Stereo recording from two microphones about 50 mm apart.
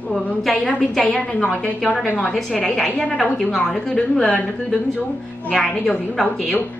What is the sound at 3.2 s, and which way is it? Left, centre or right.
Speech, centre.